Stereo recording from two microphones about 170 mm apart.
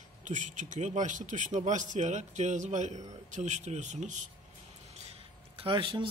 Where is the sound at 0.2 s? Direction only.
45° right (ahead or behind).